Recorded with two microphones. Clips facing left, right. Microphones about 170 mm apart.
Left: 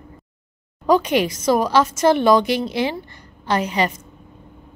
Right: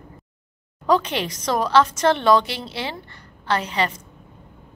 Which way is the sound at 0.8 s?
10° left (ahead or behind).